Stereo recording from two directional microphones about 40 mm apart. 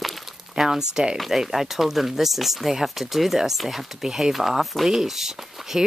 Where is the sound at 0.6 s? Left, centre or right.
Centre.